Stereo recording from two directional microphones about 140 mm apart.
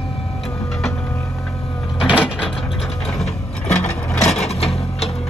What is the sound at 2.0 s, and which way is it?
Printer, 5° right (ahead or behind).